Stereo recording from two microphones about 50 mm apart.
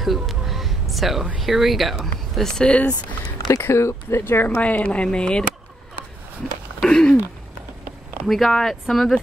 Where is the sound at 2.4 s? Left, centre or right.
Centre.